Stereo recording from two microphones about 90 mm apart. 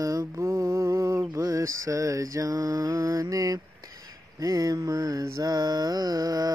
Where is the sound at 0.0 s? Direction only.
40° right (ahead or behind).